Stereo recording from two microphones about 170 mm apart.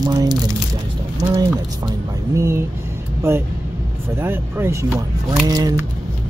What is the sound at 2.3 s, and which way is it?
Speech, 15° right (ahead or behind).